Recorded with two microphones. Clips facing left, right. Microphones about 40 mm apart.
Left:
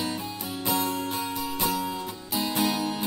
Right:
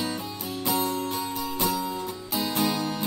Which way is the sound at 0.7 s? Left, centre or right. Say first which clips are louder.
Even; centre.